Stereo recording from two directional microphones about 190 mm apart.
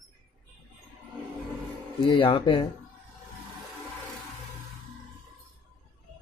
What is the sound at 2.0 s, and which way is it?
Speech, 25° left (ahead or behind).